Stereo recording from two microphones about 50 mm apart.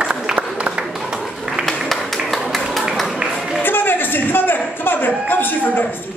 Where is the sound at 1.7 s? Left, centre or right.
Centre.